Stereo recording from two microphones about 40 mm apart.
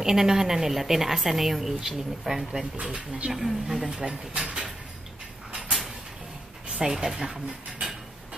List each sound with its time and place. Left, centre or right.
0.0 s a woman's voice: centre
2.8 s speech: right
3.3 s a woman's voice: centre
4.0 s speech: right
6.8 s a woman's voice: centre